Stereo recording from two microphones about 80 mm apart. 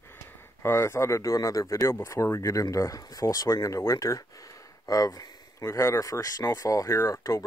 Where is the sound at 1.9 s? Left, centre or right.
Left.